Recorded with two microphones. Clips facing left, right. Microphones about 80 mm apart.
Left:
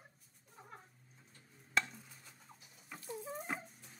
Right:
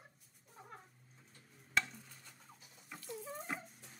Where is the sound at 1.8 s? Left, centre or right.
Centre.